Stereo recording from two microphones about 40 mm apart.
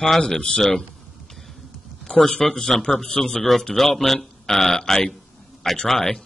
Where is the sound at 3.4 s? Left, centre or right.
Centre.